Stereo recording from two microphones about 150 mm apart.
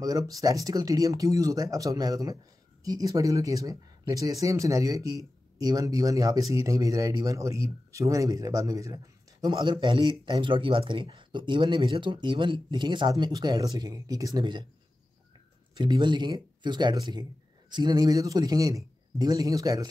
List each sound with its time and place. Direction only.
0.0 s speech: 25° right (ahead or behind)
15.8 s speech: 30° right (ahead or behind)